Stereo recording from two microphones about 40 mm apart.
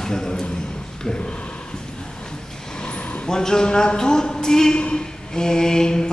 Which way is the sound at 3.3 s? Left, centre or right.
Centre.